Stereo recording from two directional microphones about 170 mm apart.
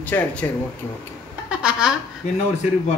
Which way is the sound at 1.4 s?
5° right (ahead or behind).